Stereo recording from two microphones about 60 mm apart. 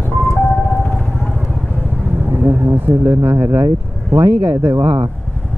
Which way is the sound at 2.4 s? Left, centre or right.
Right.